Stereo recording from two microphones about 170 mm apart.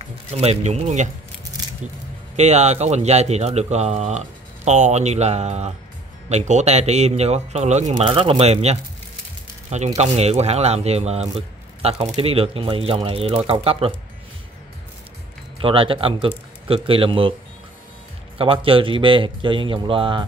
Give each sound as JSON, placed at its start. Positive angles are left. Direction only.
{"t": 0.3, "sound": "speech", "side_deg": -40}
{"t": 2.3, "sound": "speech", "side_deg": -40}
{"t": 7.9, "sound": "speech", "side_deg": -30}
{"t": 15.6, "sound": "speech", "side_deg": -30}
{"t": 18.4, "sound": "speech", "side_deg": -30}